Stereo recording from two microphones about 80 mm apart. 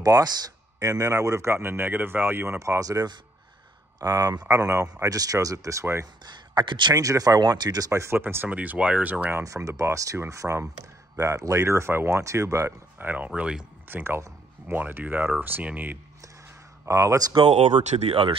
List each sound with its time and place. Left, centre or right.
0.0 s speech: right
2.6 s speech: right
6.2 s speech: right
7.0 s speech: right
8.0 s speech: right
9.4 s speech: right
13.0 s speech: right
13.8 s speech: right
16.8 s speech: right
17.3 s speech: right